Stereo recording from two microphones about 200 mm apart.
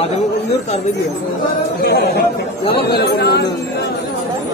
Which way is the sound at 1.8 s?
55° left (ahead or behind).